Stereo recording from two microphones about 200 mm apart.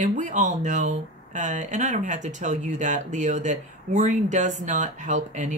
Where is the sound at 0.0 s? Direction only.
40° right (ahead or behind).